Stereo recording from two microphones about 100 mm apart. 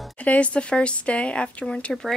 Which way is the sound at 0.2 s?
15° left (ahead or behind).